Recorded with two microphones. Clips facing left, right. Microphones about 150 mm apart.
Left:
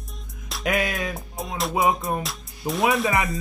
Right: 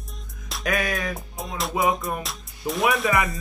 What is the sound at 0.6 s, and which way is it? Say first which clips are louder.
Speech: left 1 dB; 20° left (ahead or behind).